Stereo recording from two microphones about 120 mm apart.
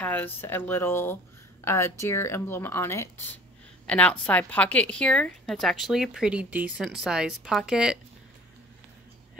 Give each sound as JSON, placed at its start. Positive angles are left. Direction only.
{"t": 0.0, "sound": "speech", "side_deg": 15}